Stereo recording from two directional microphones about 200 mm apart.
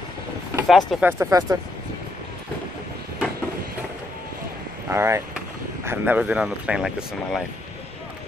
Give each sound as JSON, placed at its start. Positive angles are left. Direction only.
{"t": 0.7, "sound": "speech", "side_deg": 0}
{"t": 1.1, "sound": "speech", "side_deg": -15}
{"t": 4.8, "sound": "speech", "side_deg": -15}